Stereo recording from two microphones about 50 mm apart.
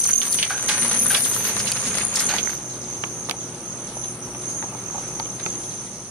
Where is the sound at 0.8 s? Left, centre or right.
Left.